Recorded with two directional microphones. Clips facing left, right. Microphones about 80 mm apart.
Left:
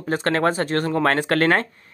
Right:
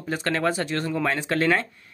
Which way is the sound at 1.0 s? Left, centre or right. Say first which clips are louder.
Left 5 dB; left.